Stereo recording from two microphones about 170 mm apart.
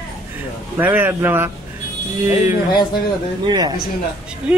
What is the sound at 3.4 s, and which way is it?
Speech, 25° right (ahead or behind).